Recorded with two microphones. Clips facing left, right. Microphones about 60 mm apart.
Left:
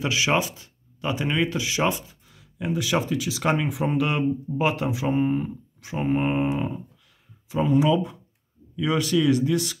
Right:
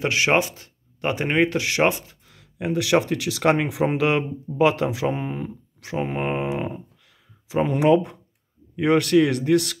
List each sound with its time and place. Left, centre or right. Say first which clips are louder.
0.0 s speech: right 3 dB; right
2.3 s speech: right 3 dB; right